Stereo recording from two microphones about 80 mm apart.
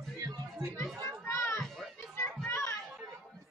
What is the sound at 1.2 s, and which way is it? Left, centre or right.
Children playing, left.